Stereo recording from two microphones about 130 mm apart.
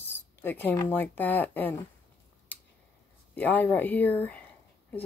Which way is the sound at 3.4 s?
15° left (ahead or behind).